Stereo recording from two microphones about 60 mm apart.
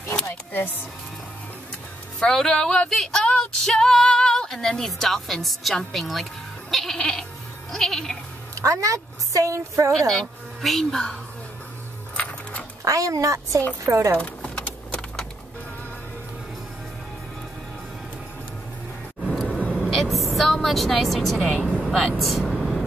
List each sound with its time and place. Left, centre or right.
0.3 s music: left
2.1 s speech: centre
3.0 s female singing: centre
6.7 s goat: centre
7.7 s speech: centre
8.5 s a woman's voice: right
10.1 s speech: centre
12.2 s music: left
12.8 s a woman's voice: right
14.2 s typing: left
19.4 s vehicle: left
19.7 s speech: centre
21.5 s vehicle: centre